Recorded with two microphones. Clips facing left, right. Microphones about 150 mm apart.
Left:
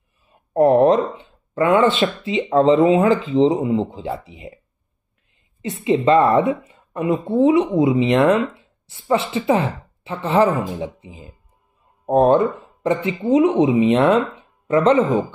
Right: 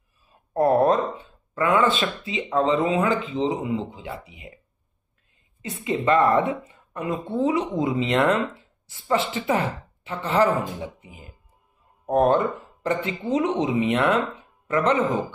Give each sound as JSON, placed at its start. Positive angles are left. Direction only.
{"t": 0.5, "sound": "a sound", "side_deg": 20}
{"t": 1.5, "sound": "speech", "side_deg": 30}
{"t": 5.6, "sound": "speech", "side_deg": 25}